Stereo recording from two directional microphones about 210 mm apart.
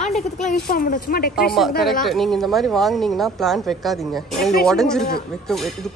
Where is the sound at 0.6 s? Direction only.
45° left (ahead or behind).